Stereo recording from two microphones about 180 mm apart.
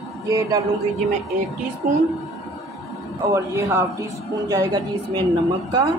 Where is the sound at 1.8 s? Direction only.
50° right (ahead or behind).